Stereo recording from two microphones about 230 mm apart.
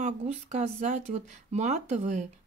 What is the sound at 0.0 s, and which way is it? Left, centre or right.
Speech, right.